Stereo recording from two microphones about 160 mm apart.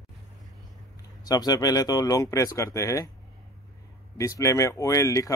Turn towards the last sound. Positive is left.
turn(degrees=20)  # may be behind; listen again after turning